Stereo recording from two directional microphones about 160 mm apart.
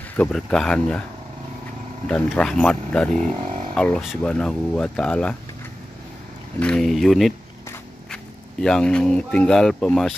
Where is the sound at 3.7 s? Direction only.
5° left (ahead or behind).